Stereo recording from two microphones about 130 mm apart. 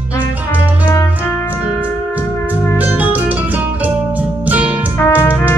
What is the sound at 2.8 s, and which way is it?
Music, 10° right (ahead or behind).